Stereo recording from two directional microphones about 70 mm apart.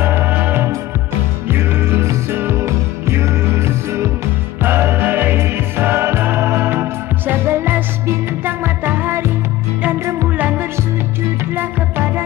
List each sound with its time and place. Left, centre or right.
0.0 s music: right